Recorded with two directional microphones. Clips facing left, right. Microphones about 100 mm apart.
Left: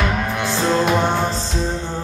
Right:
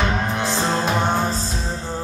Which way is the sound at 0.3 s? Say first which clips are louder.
Left 2 dB; 30° right (ahead or behind).